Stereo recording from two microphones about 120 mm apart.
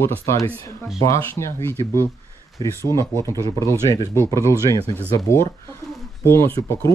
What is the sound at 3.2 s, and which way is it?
Speech, 25° left (ahead or behind).